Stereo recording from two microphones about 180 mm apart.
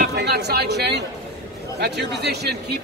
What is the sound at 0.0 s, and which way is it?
A man's voice, 65° right (ahead or behind).